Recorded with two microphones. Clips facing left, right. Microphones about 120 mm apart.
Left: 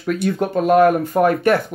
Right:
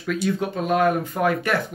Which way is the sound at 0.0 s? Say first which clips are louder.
Left 4 dB; 55° left (ahead or behind).